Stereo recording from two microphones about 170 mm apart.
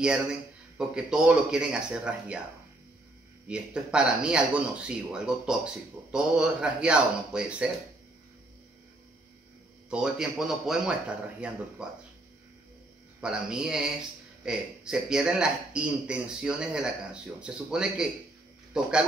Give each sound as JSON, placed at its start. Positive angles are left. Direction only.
{"t": 0.7, "sound": "a man's voice", "side_deg": -5}
{"t": 3.4, "sound": "a man's voice", "side_deg": -5}
{"t": 9.8, "sound": "a man's voice", "side_deg": -5}
{"t": 13.2, "sound": "a man's voice", "side_deg": -5}